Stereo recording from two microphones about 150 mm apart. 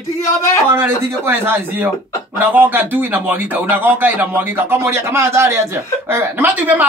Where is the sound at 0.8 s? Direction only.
15° right (ahead or behind).